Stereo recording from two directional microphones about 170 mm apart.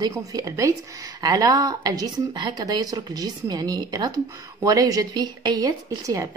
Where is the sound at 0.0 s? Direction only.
20° right (ahead or behind).